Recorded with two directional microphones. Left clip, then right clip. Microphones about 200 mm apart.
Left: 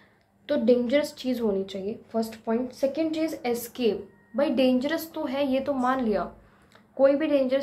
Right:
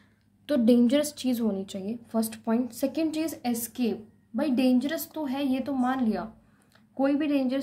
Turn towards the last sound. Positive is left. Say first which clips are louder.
# left 5 dB
turn(degrees=-25)  # may be behind; listen again after turning